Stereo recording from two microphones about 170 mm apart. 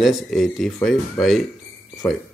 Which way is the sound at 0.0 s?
Centre (ahead or behind).